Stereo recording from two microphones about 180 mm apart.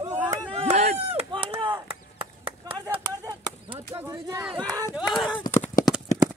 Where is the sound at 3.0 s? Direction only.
20° right (ahead or behind).